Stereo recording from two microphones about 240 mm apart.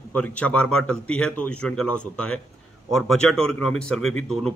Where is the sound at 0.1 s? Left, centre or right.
Centre.